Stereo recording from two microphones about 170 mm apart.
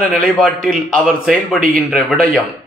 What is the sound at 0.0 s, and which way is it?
A man's voice, 5° left (ahead or behind).